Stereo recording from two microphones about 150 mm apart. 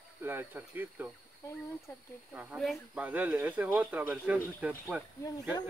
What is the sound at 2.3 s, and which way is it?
Speech, 10° right (ahead or behind).